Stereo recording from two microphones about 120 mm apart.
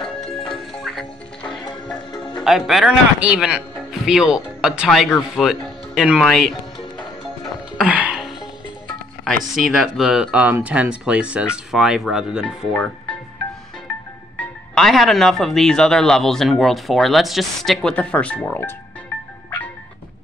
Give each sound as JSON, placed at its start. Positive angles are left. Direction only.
{"t": 0.5, "sound": "music", "side_deg": 5}
{"t": 2.0, "sound": "music", "side_deg": 40}
{"t": 2.4, "sound": "speech", "side_deg": 0}
{"t": 7.7, "sound": "music", "side_deg": -10}
{"t": 9.5, "sound": "speech", "side_deg": 0}
{"t": 12.4, "sound": "speech", "side_deg": 10}
{"t": 14.3, "sound": "music", "side_deg": 10}
{"t": 14.9, "sound": "speech", "side_deg": 0}